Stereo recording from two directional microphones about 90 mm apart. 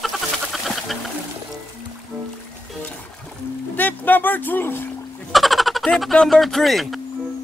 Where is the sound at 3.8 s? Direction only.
20° left (ahead or behind).